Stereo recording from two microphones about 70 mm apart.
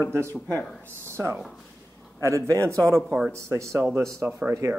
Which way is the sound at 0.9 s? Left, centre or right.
Right.